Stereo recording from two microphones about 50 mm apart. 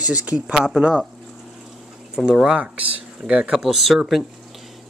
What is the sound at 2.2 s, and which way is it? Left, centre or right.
Speech, centre.